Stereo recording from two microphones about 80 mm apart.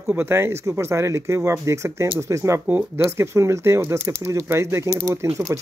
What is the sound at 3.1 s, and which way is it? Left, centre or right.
Speech, right.